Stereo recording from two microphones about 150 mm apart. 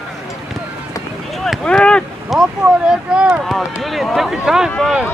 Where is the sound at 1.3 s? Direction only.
Centre (ahead or behind).